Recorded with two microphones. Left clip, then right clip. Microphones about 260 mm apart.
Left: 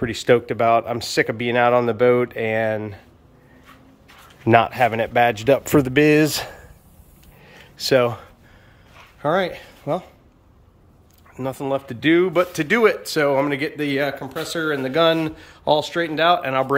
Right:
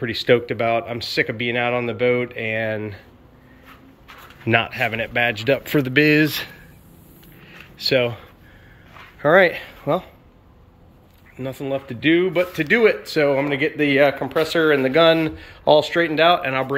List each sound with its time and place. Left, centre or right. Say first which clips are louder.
0.0 s speech: even; centre
4.5 s speech: left 4 dB; centre
7.4 s a sound: even; centre
9.2 s speech: right 6 dB; centre
11.3 s speech: left 2 dB; centre